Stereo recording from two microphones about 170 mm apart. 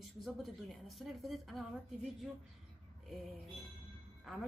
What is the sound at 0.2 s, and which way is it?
A woman's voice, centre (ahead or behind).